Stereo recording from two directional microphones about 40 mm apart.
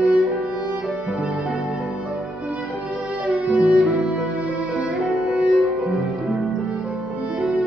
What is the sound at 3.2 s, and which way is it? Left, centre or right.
Music, right.